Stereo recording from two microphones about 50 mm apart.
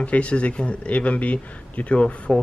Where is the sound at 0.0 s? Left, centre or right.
Left.